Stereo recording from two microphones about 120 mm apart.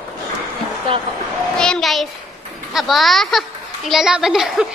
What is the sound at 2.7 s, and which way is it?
A woman's voice, centre (ahead or behind).